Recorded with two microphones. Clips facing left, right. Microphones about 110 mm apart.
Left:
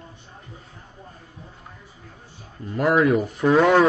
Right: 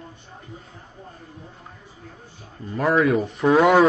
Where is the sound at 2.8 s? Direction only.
5° left (ahead or behind).